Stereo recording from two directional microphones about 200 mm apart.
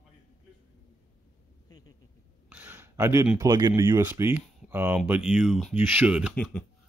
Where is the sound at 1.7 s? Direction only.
20° left (ahead or behind).